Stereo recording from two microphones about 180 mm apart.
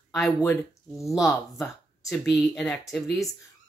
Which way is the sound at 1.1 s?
Centre (ahead or behind).